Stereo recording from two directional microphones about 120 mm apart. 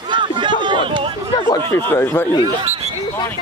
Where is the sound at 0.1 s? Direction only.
40° right (ahead or behind).